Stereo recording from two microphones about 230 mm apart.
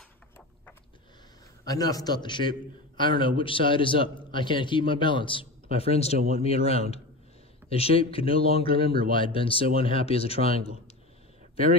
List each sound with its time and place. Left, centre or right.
1.7 s a man's voice: centre